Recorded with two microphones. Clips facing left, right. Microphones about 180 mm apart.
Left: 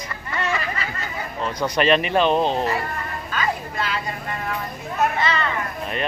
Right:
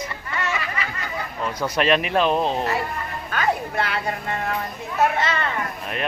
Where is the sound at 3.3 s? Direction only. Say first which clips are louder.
Right 3 dB; 65° right (ahead or behind).